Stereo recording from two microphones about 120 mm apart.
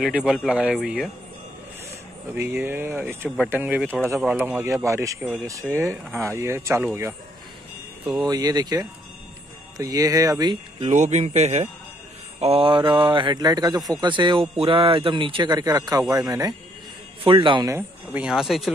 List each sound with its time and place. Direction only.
0.0 s speech: 5° right (ahead or behind)
2.3 s speech: 20° right (ahead or behind)
8.3 s a man's voice: 30° right (ahead or behind)
10.9 s speech: 80° right
12.4 s a man's voice: 55° right (ahead or behind); by 16.5 s 30° right (ahead or behind)
17.2 s speech: 45° right (ahead or behind)
17.6 s speech: 20° right (ahead or behind)
18.2 s speech: 5° right (ahead or behind)